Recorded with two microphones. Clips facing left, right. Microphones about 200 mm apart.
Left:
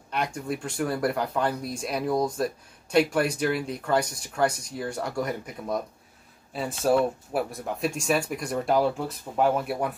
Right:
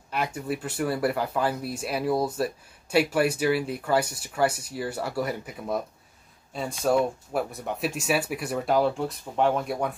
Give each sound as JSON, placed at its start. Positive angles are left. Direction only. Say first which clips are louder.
{"t": 0.1, "sound": "speech", "louder": "even", "side_deg": -5}